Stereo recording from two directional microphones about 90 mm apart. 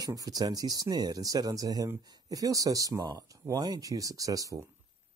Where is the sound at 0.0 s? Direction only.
45° right (ahead or behind).